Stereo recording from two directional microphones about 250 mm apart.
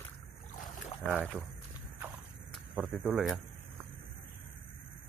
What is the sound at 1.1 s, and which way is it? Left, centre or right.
Speech, centre.